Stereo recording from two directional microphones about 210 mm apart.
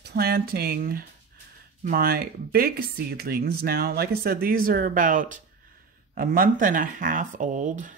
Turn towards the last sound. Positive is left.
turn(degrees=-35)  # may be behind; listen again after turning